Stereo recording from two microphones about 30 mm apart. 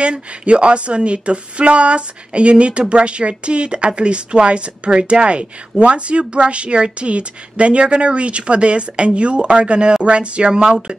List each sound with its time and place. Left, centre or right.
0.0 s speech: right
10.5 s speech: right